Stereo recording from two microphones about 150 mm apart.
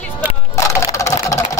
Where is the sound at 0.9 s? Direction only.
20° left (ahead or behind).